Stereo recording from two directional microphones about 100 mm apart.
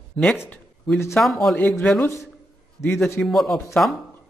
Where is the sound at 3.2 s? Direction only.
Centre (ahead or behind).